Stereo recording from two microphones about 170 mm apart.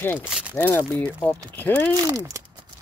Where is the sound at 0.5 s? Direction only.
10° left (ahead or behind).